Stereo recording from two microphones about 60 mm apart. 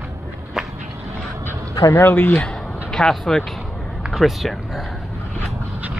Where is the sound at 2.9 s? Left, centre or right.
Centre.